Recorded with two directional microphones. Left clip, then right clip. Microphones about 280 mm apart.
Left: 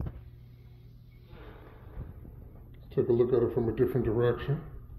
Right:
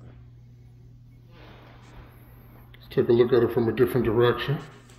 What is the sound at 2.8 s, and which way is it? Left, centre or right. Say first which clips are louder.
Speech: right 6 dB; right.